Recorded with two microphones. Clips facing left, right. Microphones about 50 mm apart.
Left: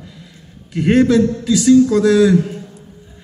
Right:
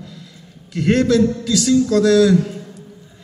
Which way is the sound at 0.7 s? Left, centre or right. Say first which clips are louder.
Left 3 dB; centre.